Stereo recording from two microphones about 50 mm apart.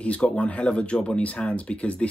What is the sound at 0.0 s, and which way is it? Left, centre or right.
Speech, left.